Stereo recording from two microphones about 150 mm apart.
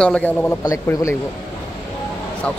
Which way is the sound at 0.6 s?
20° left (ahead or behind).